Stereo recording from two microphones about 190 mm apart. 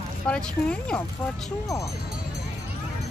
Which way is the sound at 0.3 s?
5° left (ahead or behind).